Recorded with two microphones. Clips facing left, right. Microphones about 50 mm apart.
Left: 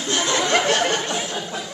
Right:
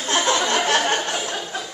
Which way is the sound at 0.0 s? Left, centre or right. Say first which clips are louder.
Right 2 dB; right.